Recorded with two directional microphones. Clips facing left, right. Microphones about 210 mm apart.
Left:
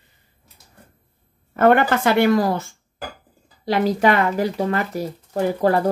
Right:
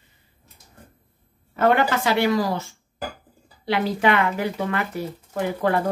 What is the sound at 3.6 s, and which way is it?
Speech, 40° left (ahead or behind).